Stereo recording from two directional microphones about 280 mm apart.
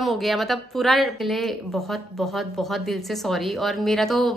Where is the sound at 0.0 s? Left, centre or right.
Centre.